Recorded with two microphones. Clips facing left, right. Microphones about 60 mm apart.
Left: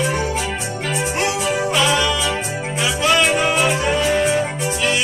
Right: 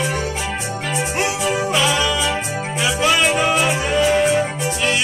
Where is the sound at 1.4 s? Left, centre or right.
Centre.